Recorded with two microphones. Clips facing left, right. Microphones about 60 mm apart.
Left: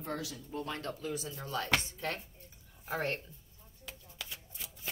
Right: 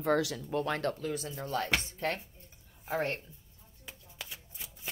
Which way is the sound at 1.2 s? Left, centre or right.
Right.